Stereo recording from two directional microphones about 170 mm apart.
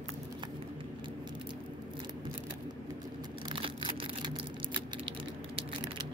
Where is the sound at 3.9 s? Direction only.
30° right (ahead or behind).